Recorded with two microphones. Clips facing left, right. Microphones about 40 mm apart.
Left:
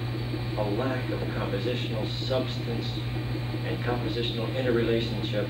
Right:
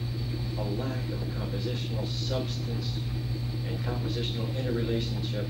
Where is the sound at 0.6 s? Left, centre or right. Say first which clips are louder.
Left 6 dB; left.